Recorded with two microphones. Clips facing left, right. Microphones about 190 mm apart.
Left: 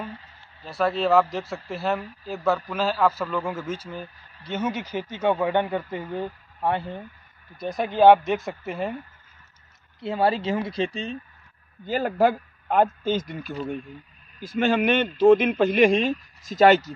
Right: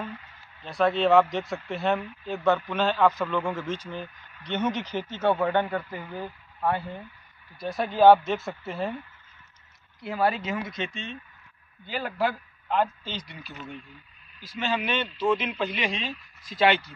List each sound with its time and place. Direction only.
0.1 s a sound: 30° left (ahead or behind)
0.7 s a man's voice: centre (ahead or behind)
9.9 s speech: 25° left (ahead or behind); by 16.9 s 40° left (ahead or behind)